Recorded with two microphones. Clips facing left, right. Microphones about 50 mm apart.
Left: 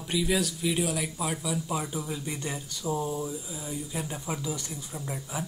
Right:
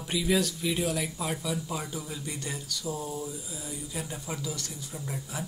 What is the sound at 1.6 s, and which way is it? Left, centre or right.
Speech, centre.